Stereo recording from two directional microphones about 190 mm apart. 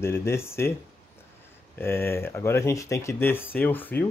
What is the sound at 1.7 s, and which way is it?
Speech, 10° left (ahead or behind).